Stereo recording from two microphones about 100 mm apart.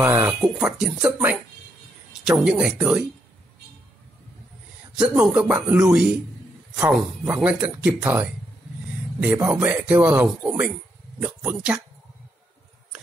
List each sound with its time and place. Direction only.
0.0 s a sound: 25° right (ahead or behind)
0.6 s speech: 5° right (ahead or behind)
1.1 s a woman's voice: 20° right (ahead or behind)
2.2 s speech: 5° right (ahead or behind)
4.9 s speech: 10° right (ahead or behind)